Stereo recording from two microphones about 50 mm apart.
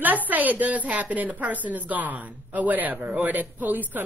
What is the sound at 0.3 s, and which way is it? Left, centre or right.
Speech, right.